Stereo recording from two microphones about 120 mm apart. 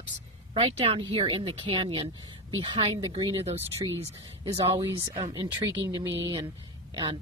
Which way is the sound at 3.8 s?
45° right (ahead or behind).